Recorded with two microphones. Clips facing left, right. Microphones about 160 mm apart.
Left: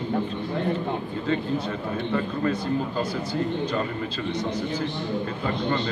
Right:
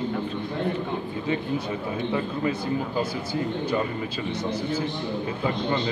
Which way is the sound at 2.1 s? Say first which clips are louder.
Left 3 dB; 10° right (ahead or behind).